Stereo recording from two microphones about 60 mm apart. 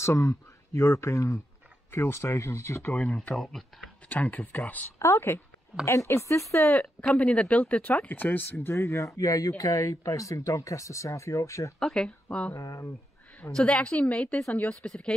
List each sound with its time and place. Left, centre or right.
0.0 s speech: left
1.9 s speech: left
2.9 s speech: left
3.3 s speech: centre
4.1 s speech: left
4.9 s speech: left
6.7 s speech: left
11.8 s speech: centre
12.5 s speech: left
13.6 s speech: centre